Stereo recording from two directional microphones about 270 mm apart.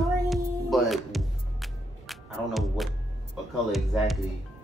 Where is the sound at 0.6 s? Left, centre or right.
Centre.